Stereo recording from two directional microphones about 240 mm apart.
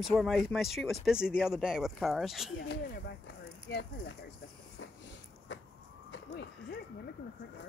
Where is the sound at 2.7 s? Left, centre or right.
Left.